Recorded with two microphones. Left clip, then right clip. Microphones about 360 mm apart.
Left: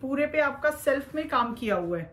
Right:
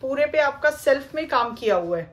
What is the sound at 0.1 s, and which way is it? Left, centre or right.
A woman's voice, right.